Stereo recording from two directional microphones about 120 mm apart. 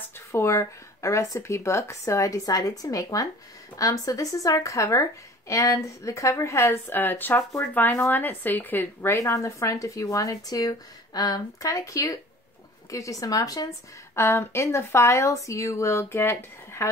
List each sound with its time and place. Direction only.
0.3 s a woman's voice: 25° left (ahead or behind)